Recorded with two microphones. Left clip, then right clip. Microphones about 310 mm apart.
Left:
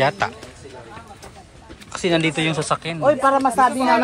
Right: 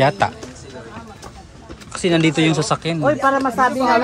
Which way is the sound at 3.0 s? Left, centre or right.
Left.